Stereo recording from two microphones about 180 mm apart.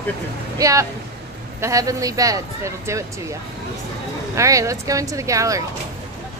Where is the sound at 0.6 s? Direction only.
15° right (ahead or behind).